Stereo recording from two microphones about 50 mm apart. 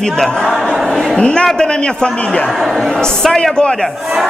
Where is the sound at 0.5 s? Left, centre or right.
Centre.